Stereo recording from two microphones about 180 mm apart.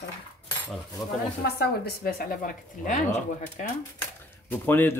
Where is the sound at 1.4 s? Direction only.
60° left (ahead or behind).